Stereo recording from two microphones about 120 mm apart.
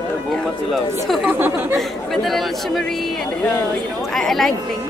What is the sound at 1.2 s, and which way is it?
Speech, 15° right (ahead or behind).